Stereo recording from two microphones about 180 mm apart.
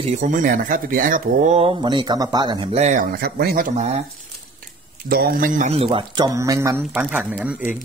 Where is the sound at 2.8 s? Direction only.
45° right (ahead or behind).